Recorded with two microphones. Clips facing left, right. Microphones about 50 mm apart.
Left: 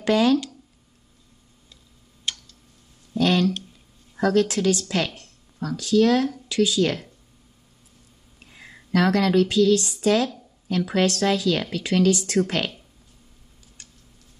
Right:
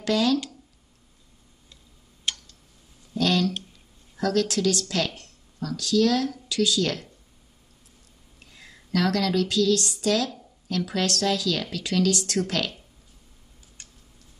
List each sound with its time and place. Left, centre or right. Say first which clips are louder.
0.0 s speech: left 4 dB; left
3.2 s a sound: left 3 dB; left
4.2 s speech: left 3 dB; left
8.5 s speech: left 2 dB; left